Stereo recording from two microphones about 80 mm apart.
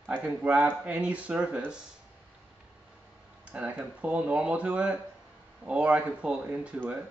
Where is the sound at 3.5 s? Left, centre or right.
Centre.